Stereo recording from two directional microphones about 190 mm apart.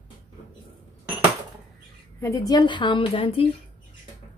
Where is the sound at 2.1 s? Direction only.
15° left (ahead or behind).